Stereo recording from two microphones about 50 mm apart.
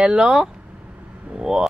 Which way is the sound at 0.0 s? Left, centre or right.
Centre.